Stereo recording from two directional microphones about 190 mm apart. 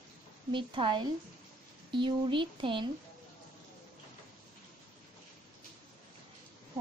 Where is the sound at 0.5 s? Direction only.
25° right (ahead or behind).